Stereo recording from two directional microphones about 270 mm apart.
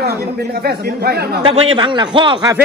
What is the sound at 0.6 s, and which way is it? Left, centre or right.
A man's voice, right.